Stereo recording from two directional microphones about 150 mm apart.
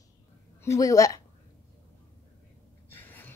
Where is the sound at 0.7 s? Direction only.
20° left (ahead or behind).